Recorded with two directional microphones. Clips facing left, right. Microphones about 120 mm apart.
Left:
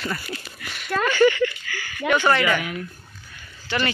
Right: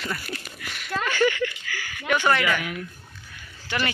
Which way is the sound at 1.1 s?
Centre (ahead or behind).